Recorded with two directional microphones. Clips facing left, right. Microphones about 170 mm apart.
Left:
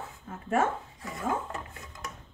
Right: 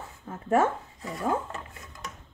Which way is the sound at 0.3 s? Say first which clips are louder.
Right 4 dB; 40° right (ahead or behind).